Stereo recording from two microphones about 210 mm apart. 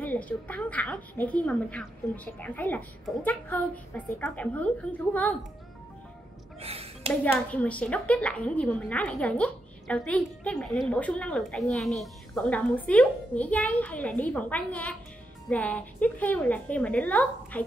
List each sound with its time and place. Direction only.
0.0 s a woman's voice: 5° left (ahead or behind)
6.6 s a sound: 30° right (ahead or behind)
7.1 s a woman's voice: 5° left (ahead or behind)